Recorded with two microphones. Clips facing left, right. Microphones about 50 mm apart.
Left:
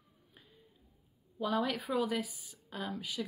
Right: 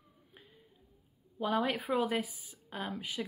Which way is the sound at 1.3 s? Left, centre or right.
Right.